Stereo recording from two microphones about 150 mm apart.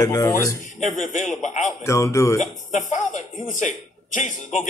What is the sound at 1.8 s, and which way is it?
Speech, 20° left (ahead or behind).